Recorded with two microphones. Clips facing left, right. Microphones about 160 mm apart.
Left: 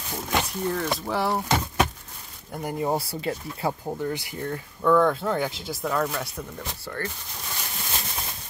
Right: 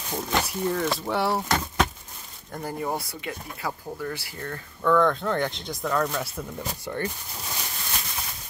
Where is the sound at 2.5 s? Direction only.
10° left (ahead or behind).